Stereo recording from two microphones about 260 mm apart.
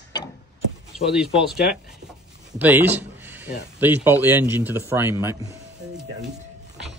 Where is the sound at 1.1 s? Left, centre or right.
Centre.